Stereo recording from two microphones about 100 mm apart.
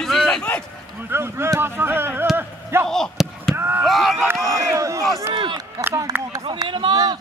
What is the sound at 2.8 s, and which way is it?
Basketball bounce, centre (ahead or behind).